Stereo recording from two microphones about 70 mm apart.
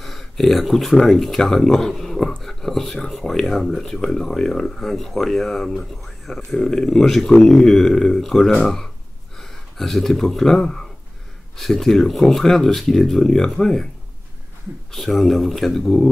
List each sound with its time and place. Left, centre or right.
0.0 s speech: centre
14.9 s speech: centre